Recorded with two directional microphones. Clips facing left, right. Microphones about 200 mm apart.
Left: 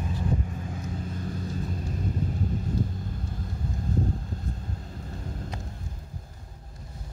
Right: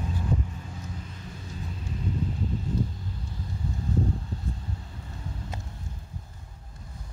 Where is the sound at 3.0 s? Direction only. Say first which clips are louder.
Left 3 dB; 50° left (ahead or behind).